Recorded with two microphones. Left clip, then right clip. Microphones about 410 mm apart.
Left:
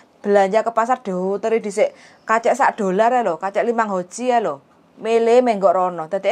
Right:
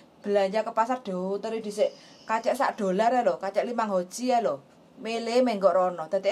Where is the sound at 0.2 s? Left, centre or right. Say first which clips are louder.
Left 9 dB; left.